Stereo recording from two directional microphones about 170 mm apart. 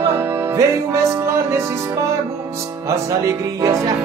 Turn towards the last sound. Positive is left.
turn(degrees=-20)  # may be behind; listen again after turning